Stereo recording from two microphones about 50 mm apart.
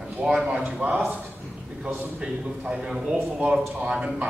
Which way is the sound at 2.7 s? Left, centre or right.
Centre.